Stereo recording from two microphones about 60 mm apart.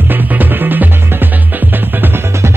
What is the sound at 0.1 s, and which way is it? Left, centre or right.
Music, right.